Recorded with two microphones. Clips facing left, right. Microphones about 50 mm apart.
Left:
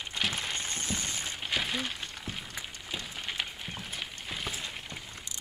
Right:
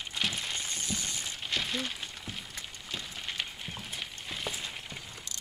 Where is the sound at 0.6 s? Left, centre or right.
Left.